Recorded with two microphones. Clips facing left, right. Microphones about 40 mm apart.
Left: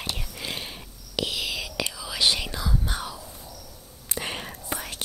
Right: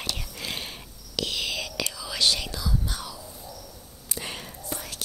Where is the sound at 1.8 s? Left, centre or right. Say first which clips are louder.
Left 2 dB; centre.